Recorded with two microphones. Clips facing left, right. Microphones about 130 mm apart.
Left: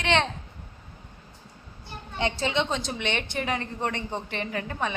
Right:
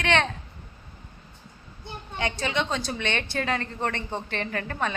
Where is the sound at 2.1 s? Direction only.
25° left (ahead or behind).